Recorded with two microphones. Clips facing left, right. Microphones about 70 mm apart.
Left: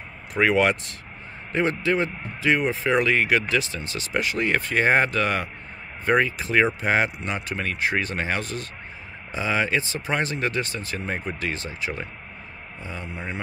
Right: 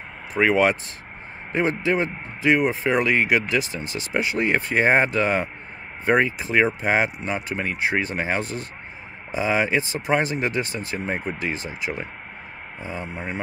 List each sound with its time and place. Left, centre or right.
0.4 s speech: centre
1.5 s speech: centre